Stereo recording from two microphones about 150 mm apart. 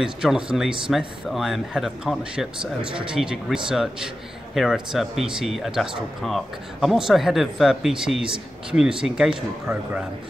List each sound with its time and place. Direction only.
0.0 s speech: 5° right (ahead or behind)